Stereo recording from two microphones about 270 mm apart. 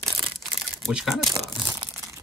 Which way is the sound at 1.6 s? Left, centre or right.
Centre.